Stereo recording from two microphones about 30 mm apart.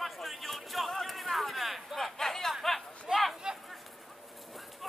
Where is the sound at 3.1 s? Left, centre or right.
Centre.